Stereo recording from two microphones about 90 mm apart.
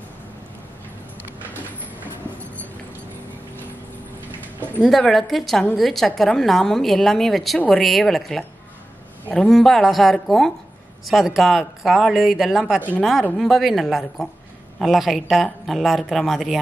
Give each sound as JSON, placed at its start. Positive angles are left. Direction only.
{"t": 4.8, "sound": "a woman's voice", "side_deg": 0}